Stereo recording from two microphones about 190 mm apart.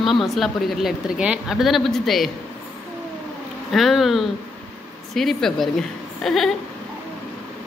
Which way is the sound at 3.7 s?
Centre (ahead or behind).